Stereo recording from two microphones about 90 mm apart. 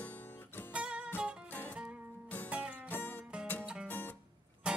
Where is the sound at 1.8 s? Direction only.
15° right (ahead or behind).